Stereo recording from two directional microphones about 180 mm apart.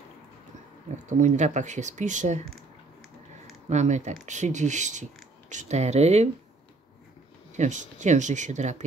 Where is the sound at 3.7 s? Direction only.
40° right (ahead or behind).